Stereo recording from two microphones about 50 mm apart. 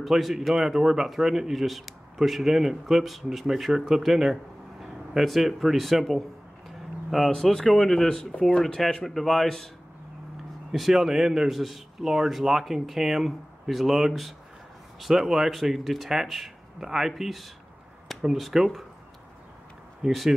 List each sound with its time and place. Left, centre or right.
0.0 s speech: centre; by 8.5 s left
8.5 s speech: centre
10.7 s speech: centre
20.0 s speech: centre